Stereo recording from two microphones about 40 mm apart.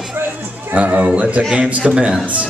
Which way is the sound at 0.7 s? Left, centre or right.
Right.